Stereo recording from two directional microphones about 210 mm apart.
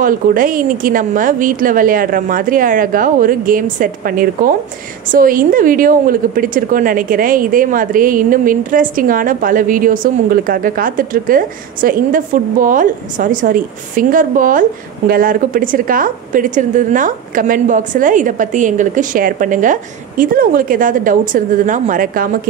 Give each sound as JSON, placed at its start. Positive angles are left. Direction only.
{"t": 0.0, "sound": "a woman's voice", "side_deg": -40}